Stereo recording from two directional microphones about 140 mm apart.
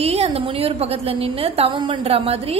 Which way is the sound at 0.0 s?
45° right (ahead or behind).